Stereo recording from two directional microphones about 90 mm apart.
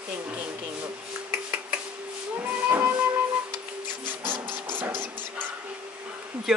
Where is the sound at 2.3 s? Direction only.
25° right (ahead or behind).